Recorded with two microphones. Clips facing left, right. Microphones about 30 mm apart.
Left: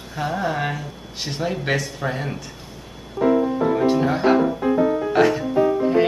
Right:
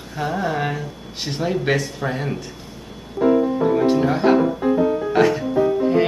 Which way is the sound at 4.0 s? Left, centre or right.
Centre.